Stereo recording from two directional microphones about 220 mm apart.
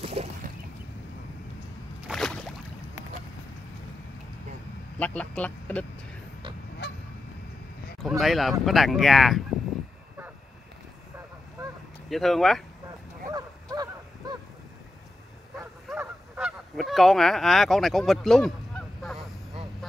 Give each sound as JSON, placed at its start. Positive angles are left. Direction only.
{"t": 0.0, "sound": "a sound", "side_deg": -30}
{"t": 2.0, "sound": "a sound", "side_deg": 0}
{"t": 4.9, "sound": "speech", "side_deg": 5}
{"t": 8.2, "sound": "speech", "side_deg": 0}
{"t": 12.1, "sound": "speech", "side_deg": 0}
{"t": 13.3, "sound": "dog", "side_deg": -15}
{"t": 15.9, "sound": "honk", "side_deg": -5}